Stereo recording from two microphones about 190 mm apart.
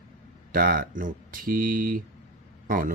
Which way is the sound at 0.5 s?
50° right (ahead or behind).